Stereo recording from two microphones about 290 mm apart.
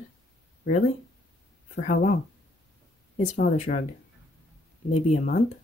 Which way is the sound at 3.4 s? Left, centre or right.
Left.